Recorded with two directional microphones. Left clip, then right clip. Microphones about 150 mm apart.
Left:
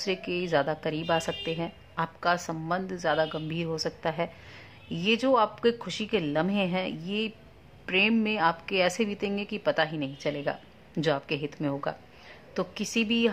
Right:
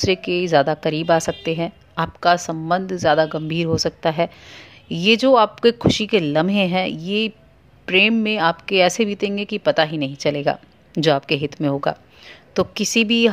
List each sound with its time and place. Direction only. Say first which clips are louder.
0.0 s a woman's voice: right 11 dB; 40° right (ahead or behind)